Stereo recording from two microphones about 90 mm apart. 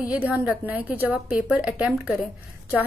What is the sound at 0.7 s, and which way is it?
A woman's voice, 20° right (ahead or behind).